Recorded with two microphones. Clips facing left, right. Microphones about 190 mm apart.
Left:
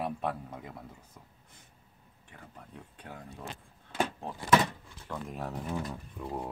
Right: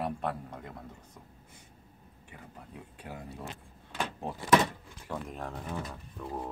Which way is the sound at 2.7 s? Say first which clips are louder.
Right 3 dB; 10° right (ahead or behind).